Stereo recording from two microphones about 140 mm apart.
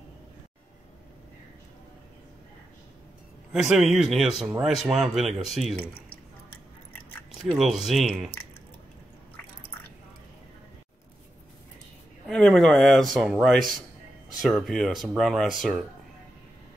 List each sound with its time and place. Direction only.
3.5 s speech: centre (ahead or behind)
7.5 s speech: centre (ahead or behind)
12.3 s speech: 5° left (ahead or behind)